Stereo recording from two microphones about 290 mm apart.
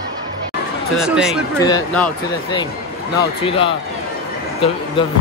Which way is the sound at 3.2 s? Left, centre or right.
Centre.